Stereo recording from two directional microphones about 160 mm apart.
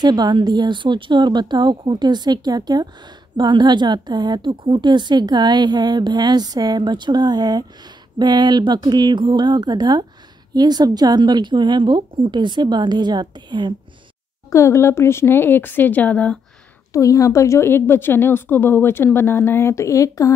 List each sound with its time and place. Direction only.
0.0 s a woman's voice: 25° right (ahead or behind)
14.5 s a woman's voice: 15° left (ahead or behind)
16.9 s a woman's voice: 20° left (ahead or behind)